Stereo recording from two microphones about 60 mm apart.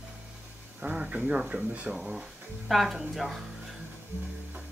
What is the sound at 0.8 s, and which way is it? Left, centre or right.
Speech, centre.